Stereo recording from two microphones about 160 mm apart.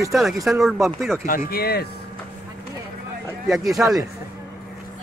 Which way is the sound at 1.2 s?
70° left (ahead or behind).